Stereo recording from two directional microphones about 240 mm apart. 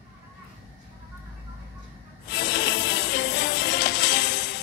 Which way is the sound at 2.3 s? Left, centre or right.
Left.